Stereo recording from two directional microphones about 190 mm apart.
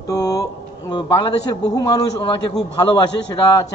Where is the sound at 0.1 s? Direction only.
20° left (ahead or behind).